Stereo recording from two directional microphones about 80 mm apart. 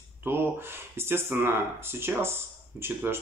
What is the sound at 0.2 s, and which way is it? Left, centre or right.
Speech, right.